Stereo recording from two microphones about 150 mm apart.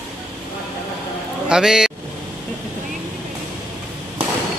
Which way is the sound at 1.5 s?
5° right (ahead or behind).